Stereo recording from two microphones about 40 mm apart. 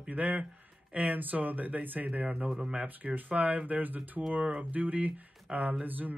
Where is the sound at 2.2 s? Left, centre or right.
Right.